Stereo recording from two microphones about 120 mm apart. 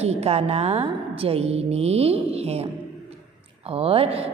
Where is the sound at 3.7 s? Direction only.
55° right (ahead or behind).